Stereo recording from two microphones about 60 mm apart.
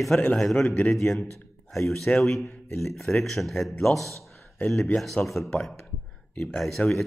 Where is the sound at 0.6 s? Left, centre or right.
Left.